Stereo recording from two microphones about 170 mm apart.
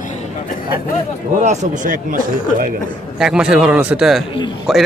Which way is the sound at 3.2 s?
5° right (ahead or behind).